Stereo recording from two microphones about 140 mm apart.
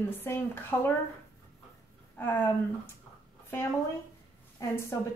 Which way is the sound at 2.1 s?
15° left (ahead or behind).